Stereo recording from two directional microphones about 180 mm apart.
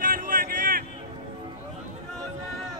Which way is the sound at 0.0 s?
50° right (ahead or behind).